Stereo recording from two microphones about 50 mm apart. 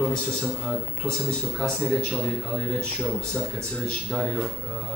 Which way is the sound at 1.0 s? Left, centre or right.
Left.